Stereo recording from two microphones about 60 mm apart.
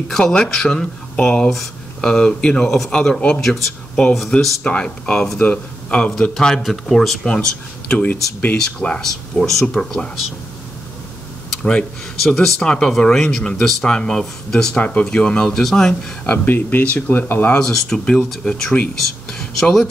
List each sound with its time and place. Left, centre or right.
0.2 s speech: centre
3.6 s speech: centre
4.6 s speech: centre
6.3 s speech: centre
7.9 s speech: left
8.5 s speech: centre
9.0 s speech: centre
12.2 s speech: centre
15.9 s speech: centre
16.4 s speech: left
17.6 s speech: centre